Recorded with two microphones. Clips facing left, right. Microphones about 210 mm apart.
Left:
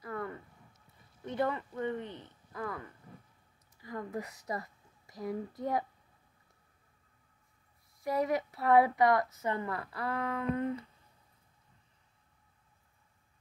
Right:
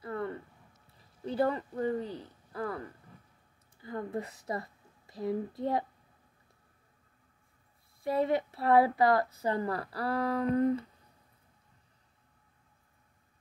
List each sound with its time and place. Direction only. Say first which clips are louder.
0.0 s a sound: right 3 dB; 30° right (ahead or behind)
1.2 s a woman's voice: right 3 dB; 30° right (ahead or behind)
8.0 s a woman's voice: right 2 dB; 25° right (ahead or behind)